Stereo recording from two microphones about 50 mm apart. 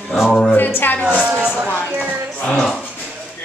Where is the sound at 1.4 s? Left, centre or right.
Right.